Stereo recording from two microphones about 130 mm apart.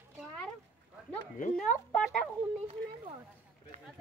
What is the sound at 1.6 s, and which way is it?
Speech, 5° left (ahead or behind).